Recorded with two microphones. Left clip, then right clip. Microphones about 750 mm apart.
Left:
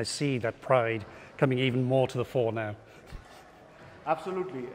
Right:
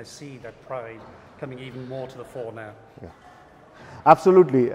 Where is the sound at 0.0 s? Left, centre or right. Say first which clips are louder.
Left 9 dB; left.